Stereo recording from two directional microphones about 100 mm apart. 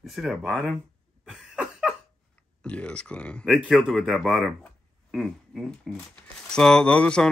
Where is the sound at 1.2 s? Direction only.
5° right (ahead or behind).